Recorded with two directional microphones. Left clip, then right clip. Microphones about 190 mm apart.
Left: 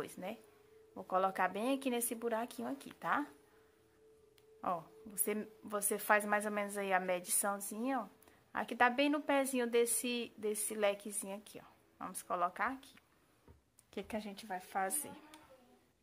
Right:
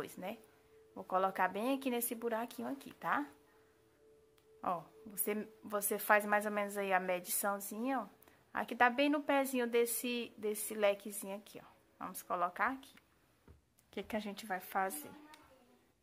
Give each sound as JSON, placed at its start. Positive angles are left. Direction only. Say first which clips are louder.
{"t": 0.0, "sound": "a woman's voice", "louder": "even", "side_deg": 0}
{"t": 4.6, "sound": "a woman's voice", "louder": "even", "side_deg": 0}
{"t": 14.8, "sound": "a woman's voice", "louder": "even", "side_deg": -5}